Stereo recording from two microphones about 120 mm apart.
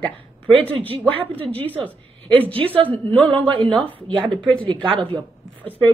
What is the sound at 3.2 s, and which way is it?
Speech, 45° right (ahead or behind).